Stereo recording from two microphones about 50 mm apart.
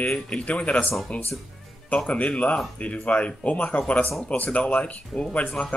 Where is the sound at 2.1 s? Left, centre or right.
Left.